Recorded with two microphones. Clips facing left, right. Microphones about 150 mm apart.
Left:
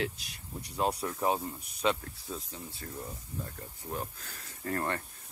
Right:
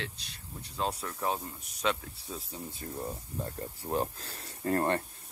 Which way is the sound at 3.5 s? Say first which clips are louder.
Right 9 dB; 35° right (ahead or behind).